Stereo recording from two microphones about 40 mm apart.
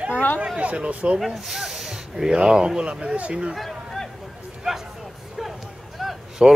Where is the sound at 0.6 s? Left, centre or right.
Right.